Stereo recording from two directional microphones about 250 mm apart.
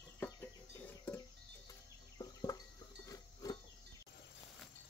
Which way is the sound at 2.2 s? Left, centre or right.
Centre.